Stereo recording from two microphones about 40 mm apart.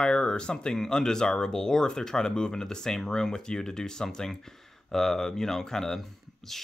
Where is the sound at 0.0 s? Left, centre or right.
Left.